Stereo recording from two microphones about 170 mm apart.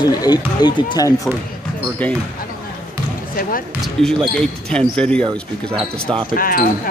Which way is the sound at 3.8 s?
Centre (ahead or behind).